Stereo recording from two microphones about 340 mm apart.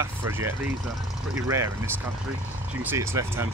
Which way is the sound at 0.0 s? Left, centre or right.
Centre.